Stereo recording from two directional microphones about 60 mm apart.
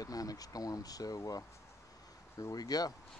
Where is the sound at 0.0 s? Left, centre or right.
Left.